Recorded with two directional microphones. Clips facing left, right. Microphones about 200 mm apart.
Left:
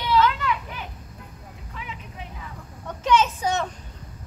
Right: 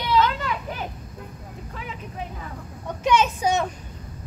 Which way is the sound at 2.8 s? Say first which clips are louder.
Even; 15° right (ahead or behind).